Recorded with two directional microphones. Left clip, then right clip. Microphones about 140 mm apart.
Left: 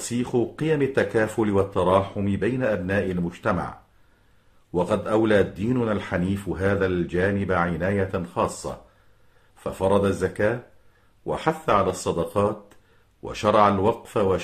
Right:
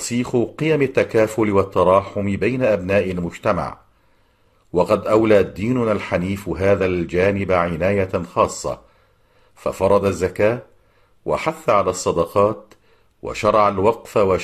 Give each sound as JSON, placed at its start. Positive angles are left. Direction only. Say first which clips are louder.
{"t": 0.2, "sound": "speech", "louder": "right 4 dB", "side_deg": -20}
{"t": 4.7, "sound": "speech", "louder": "right 6 dB", "side_deg": -20}